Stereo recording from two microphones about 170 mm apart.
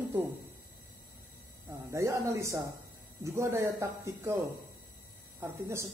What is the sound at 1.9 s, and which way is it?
Speech, 15° right (ahead or behind).